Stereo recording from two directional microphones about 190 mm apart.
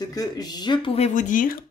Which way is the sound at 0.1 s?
20° left (ahead or behind).